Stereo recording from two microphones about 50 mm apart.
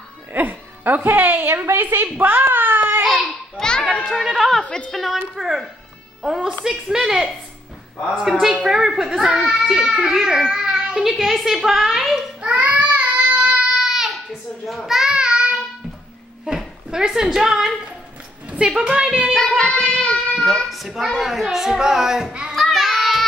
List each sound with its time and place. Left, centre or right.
0.3 s a woman's voice: right
3.0 s babbling: centre
3.5 s children playing: centre
3.9 s a woman's voice: centre
4.6 s a woman's voice: left
4.9 s a woman's voice: centre
10.5 s a sound: centre
11.0 s a woman's voice: centre
12.4 s child singing: right
16.4 s a sound: centre
18.5 s a woman's voice: right
19.6 s speech: centre
20.7 s a child's voice: centre
22.6 s child singing: centre